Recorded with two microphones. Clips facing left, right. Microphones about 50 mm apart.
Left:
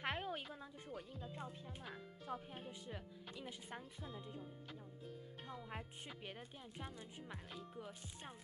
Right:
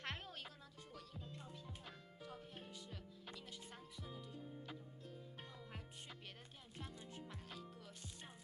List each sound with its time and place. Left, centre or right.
0.0 s music: centre
1.3 s speech: left
5.5 s music: left
6.8 s speech: centre